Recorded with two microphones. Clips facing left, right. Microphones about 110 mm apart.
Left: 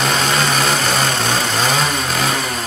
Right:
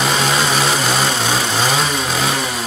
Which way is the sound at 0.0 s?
5° right (ahead or behind).